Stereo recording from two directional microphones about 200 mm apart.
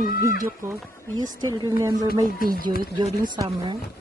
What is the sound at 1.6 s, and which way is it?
Speech, 15° right (ahead or behind).